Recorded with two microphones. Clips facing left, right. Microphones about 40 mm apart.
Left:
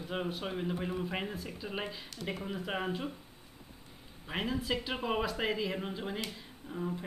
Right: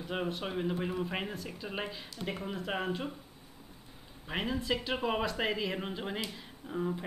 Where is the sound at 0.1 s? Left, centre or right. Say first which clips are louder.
Right 1 dB; centre.